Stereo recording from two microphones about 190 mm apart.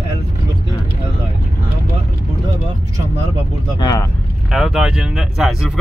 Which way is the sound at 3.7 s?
20° left (ahead or behind).